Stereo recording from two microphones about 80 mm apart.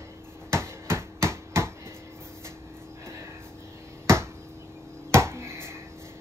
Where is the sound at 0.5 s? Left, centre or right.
Right.